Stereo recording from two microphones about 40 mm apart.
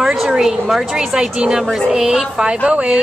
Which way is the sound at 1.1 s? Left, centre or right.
Right.